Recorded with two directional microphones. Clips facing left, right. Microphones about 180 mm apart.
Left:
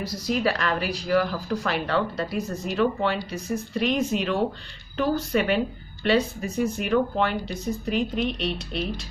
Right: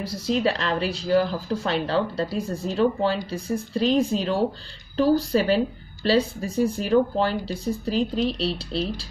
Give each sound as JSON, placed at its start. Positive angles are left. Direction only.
{"t": 0.0, "sound": "speech", "side_deg": -25}